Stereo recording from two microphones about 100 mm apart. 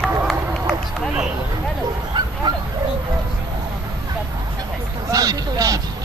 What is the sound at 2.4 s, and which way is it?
Bow-wow, 45° right (ahead or behind).